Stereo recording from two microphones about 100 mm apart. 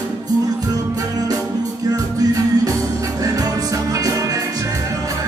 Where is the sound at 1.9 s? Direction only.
40° right (ahead or behind).